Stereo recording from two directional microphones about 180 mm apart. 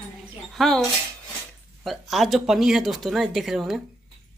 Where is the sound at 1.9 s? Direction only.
Centre (ahead or behind).